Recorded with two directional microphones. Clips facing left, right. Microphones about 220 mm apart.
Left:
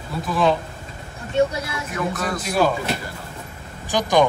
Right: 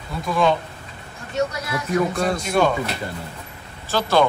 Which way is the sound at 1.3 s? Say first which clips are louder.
Left 3 dB; 30° left (ahead or behind).